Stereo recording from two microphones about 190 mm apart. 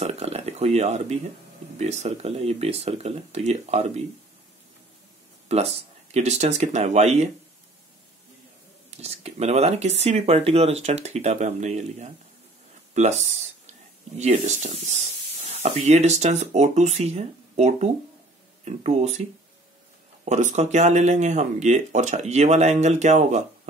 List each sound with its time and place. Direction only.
0.0 s a sound: 35° right (ahead or behind)
1.8 s speech: 35° right (ahead or behind)
5.5 s speech: 35° right (ahead or behind)
8.9 s speech: 35° right (ahead or behind)
20.2 s speech: 40° right (ahead or behind)